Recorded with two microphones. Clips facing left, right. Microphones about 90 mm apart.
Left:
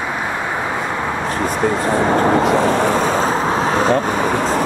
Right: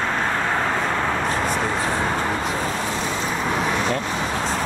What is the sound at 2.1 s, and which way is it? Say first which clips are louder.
Vehicle: left 10 dB; 60° left (ahead or behind).